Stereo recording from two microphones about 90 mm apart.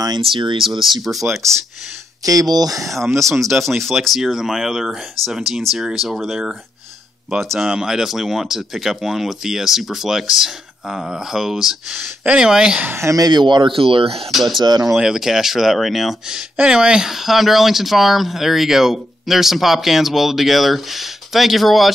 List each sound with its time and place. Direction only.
0.4 s speech: 60° right (ahead or behind)
0.7 s speech: centre (ahead or behind)
2.2 s speech: 45° right (ahead or behind)
2.9 s speech: centre (ahead or behind)
12.8 s speech: 30° right (ahead or behind)
13.1 s speech: 50° right (ahead or behind); by 14.2 s 90° right
14.3 s speech: centre (ahead or behind)
14.6 s speech: 50° right (ahead or behind)
14.9 s speech: 5° right (ahead or behind)